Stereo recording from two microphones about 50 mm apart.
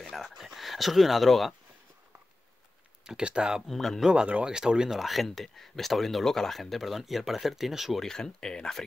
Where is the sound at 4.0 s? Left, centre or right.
Centre.